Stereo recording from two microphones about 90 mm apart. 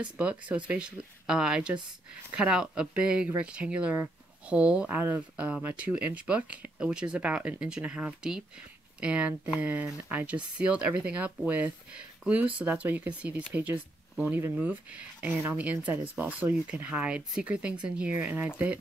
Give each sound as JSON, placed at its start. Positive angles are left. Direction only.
{"t": 0.0, "sound": "speech", "side_deg": -15}
{"t": 4.8, "sound": "speech", "side_deg": -20}